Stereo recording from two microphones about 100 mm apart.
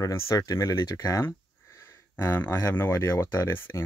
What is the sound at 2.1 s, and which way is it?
Speech, 20° left (ahead or behind).